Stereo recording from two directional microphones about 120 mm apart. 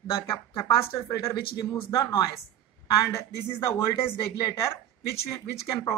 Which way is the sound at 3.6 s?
20° left (ahead or behind).